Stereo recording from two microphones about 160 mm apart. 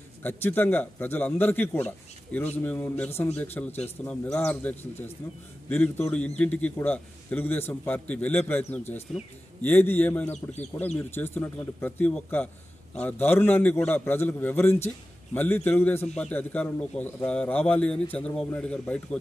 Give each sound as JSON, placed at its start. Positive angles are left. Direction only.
{"t": 0.2, "sound": "a man's voice", "side_deg": 15}